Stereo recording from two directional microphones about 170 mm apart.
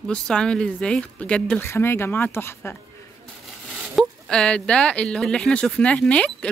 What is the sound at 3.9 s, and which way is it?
Speech, 5° left (ahead or behind).